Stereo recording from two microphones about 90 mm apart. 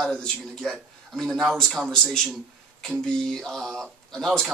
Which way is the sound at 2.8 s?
5° left (ahead or behind).